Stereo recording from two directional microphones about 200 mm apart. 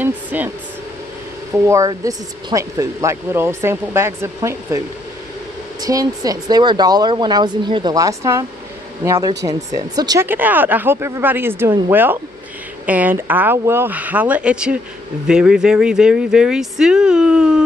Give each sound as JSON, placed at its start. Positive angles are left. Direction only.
{"t": 0.0, "sound": "speech", "side_deg": -10}
{"t": 1.5, "sound": "speech", "side_deg": -15}